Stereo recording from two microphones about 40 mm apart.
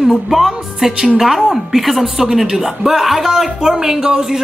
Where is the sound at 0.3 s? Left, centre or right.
Centre.